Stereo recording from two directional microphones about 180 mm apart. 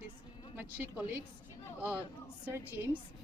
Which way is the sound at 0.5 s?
10° right (ahead or behind).